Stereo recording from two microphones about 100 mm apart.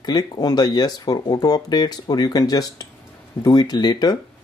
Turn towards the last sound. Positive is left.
turn(degrees=45)  # may be behind; listen again after turning